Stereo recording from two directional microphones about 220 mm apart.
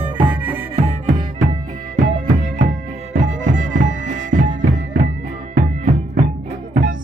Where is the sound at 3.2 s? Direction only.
35° right (ahead or behind).